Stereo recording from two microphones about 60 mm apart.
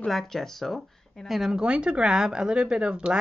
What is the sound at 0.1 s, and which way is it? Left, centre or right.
Speech, centre.